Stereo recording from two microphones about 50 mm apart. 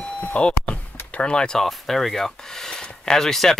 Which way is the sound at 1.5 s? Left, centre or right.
Centre.